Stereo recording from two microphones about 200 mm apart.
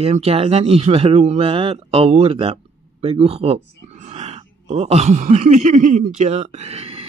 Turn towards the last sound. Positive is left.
turn(degrees=-30)  # may be behind; listen again after turning